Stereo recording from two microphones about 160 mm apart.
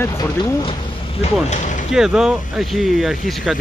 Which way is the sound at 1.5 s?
50° left (ahead or behind).